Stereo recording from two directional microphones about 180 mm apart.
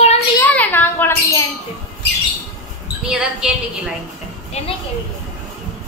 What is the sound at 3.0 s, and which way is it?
Speech, 5° right (ahead or behind).